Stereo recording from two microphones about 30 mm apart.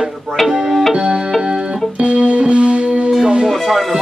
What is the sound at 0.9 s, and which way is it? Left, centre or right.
Music, right.